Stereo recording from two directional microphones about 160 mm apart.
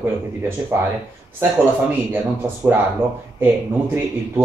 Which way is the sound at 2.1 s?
15° right (ahead or behind).